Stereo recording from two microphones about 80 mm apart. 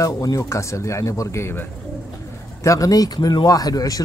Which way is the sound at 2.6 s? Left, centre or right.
Left.